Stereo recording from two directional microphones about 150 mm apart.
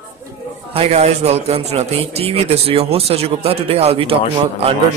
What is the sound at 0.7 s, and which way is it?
A man's voice, 45° right (ahead or behind).